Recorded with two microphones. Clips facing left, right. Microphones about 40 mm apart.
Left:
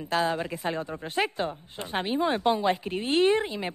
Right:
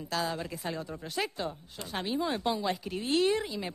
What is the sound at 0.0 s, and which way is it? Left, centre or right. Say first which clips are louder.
A woman's voice: left 6 dB; left.